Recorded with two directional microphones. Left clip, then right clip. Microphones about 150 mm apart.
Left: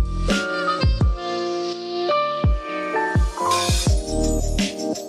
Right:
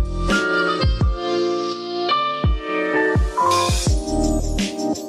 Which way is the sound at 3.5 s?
Centre (ahead or behind).